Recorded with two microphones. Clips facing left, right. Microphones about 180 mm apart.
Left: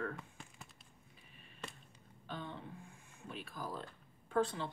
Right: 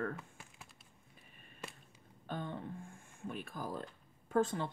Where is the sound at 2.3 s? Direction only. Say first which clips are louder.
Right 4 dB; 50° right (ahead or behind).